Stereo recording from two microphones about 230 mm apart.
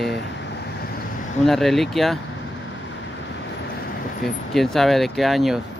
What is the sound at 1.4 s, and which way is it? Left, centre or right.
Speech, centre.